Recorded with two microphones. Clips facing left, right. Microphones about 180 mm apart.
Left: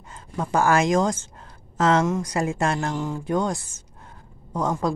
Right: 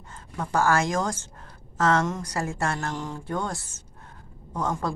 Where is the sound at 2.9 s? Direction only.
5° left (ahead or behind).